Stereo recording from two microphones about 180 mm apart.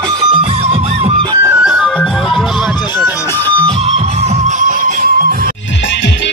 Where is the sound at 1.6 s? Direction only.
5° right (ahead or behind).